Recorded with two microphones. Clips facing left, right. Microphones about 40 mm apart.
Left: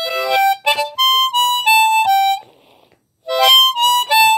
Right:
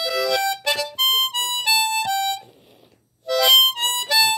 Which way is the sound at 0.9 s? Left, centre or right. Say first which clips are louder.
Left 6 dB; left.